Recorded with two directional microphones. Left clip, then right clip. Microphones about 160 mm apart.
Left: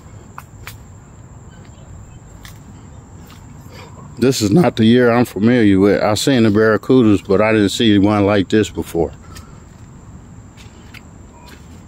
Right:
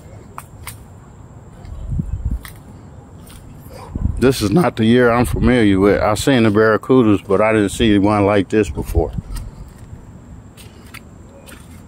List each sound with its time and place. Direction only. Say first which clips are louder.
4.2 s speech: left 1 dB; 30° left (ahead or behind)